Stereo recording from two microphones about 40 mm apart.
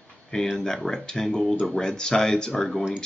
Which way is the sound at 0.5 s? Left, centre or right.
Centre.